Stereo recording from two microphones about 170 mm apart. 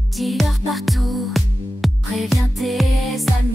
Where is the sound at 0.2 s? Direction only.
Centre (ahead or behind).